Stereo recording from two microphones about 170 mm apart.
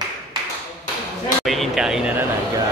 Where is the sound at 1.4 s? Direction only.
Centre (ahead or behind).